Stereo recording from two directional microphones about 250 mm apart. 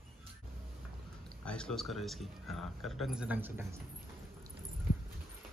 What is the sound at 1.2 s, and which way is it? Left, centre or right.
Speech, centre.